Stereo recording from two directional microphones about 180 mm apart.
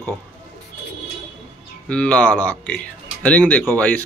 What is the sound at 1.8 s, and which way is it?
A man's voice, 5° left (ahead or behind).